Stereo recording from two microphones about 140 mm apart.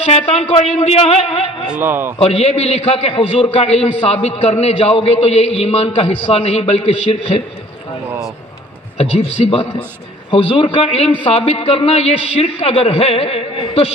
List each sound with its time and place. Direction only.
0.0 s a man's voice: 50° left (ahead or behind)
1.7 s a man's voice: 10° right (ahead or behind)
2.1 s a man's voice: 50° left (ahead or behind)
8.9 s a man's voice: 45° left (ahead or behind)